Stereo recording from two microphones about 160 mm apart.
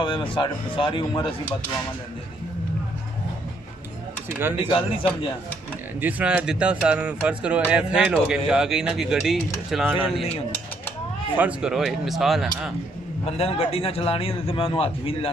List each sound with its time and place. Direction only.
0.0 s a man's voice: 30° left (ahead or behind)
4.3 s speech: 15° right (ahead or behind)
4.6 s a man's voice: 35° left (ahead or behind)
5.9 s speech: 10° right (ahead or behind)
11.3 s speech: 5° right (ahead or behind)
13.2 s a man's voice: 40° left (ahead or behind)